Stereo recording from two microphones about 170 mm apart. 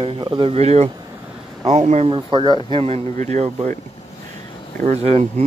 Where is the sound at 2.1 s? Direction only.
25° right (ahead or behind).